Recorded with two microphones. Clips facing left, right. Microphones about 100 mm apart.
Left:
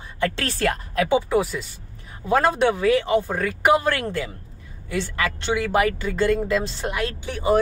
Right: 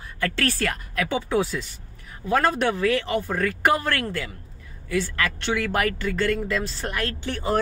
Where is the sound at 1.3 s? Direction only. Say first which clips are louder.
Left 2 dB; 5° left (ahead or behind).